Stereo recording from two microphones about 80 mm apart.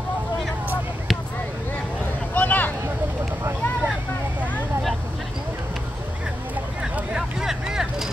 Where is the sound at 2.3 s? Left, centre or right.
Left.